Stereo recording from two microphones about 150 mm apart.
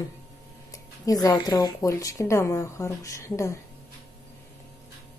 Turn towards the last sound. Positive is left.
turn(degrees=20)  # may be behind; listen again after turning